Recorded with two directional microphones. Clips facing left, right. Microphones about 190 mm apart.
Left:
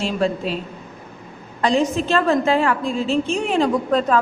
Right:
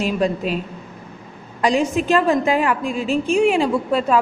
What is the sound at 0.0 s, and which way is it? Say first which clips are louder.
Speech: right 1 dB; 15° right (ahead or behind).